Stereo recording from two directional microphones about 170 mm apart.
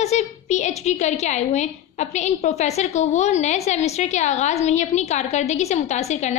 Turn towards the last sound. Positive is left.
turn(degrees=40)  # may be behind; listen again after turning